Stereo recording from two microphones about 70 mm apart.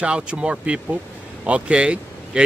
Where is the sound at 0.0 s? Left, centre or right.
Centre.